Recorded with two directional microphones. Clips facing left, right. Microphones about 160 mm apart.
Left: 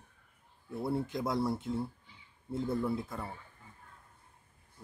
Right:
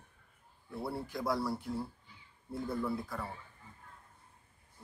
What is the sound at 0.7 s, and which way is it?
Speech, 20° left (ahead or behind).